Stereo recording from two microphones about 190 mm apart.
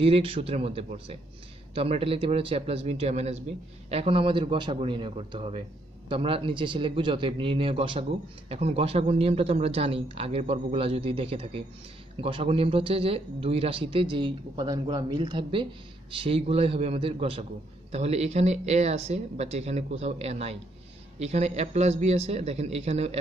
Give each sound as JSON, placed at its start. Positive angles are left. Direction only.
{"t": 0.0, "sound": "speech", "side_deg": -30}